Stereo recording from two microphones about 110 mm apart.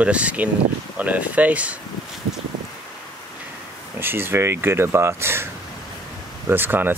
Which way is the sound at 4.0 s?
20° right (ahead or behind).